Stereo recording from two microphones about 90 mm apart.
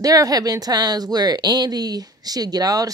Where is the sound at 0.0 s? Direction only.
40° right (ahead or behind).